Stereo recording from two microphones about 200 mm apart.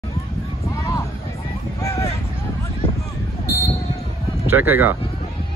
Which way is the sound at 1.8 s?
15° left (ahead or behind).